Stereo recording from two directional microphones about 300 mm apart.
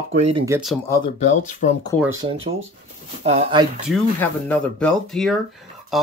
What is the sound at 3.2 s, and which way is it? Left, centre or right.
Speech, right.